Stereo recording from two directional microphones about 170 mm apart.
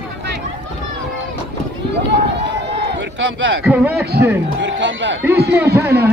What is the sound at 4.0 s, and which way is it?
Speech, 70° right (ahead or behind).